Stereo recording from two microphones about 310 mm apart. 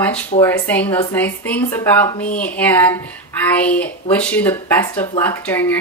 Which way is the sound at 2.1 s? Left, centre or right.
Left.